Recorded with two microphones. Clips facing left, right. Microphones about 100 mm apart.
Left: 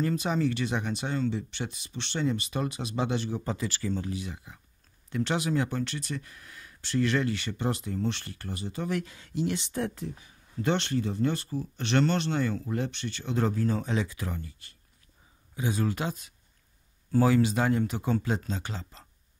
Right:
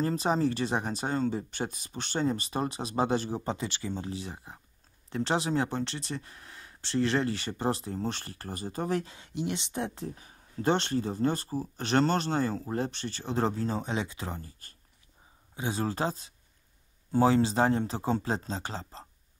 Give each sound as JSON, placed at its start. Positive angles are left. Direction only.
{"t": 0.0, "sound": "speech", "side_deg": -35}
{"t": 10.0, "sound": "speech", "side_deg": -35}